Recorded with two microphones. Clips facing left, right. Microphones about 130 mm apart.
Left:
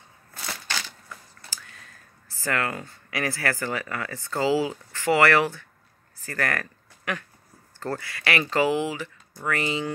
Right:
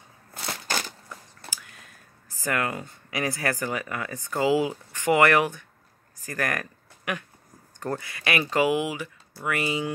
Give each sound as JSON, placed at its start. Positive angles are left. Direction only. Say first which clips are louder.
{"t": 0.7, "sound": "crushing", "louder": "right 5 dB", "side_deg": -45}
{"t": 1.5, "sound": "speech", "louder": "right 2 dB", "side_deg": -15}